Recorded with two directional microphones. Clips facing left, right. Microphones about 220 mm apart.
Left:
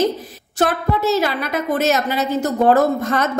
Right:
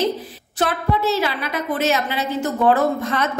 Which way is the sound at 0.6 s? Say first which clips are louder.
Left 2 dB; 45° left (ahead or behind).